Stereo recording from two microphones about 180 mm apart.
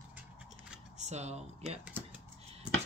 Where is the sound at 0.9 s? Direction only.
40° right (ahead or behind).